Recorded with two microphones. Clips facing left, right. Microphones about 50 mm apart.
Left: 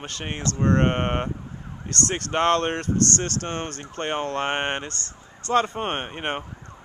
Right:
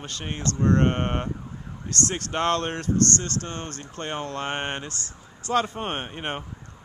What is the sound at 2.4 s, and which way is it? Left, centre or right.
Speech, centre.